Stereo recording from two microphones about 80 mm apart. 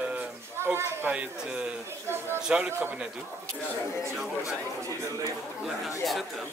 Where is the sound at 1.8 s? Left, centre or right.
Right.